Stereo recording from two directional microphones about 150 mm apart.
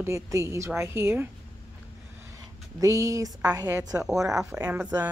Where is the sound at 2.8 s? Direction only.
20° right (ahead or behind).